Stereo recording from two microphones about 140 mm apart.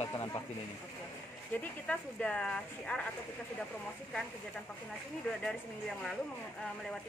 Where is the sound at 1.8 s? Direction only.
10° left (ahead or behind).